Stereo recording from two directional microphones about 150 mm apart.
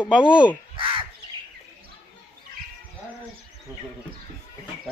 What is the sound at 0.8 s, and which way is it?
Crow, 35° right (ahead or behind).